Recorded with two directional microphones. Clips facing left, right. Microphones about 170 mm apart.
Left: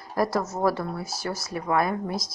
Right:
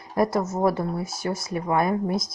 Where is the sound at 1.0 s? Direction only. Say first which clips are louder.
Right 3 dB; centre (ahead or behind).